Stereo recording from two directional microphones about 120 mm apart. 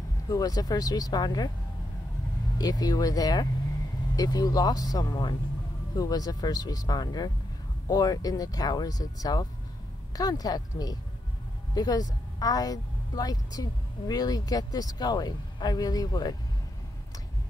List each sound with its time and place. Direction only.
0.3 s a woman's voice: 30° left (ahead or behind)
2.6 s a woman's voice: 30° left (ahead or behind)